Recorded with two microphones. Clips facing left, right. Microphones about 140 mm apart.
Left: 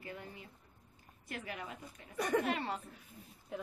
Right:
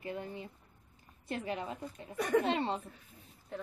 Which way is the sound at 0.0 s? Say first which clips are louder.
Right 7 dB; 25° right (ahead or behind).